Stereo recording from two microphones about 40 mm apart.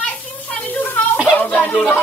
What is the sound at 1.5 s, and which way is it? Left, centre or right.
Speech, left.